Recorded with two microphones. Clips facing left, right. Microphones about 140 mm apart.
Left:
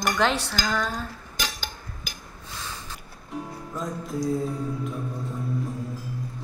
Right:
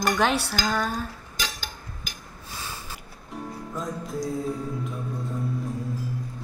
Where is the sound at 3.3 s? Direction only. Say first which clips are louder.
Even; centre (ahead or behind).